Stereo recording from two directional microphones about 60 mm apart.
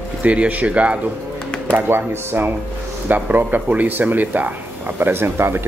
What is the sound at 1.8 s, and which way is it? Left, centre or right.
Speech, right.